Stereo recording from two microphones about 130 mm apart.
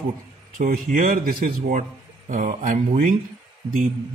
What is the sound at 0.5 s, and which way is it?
A man's voice, 90° right.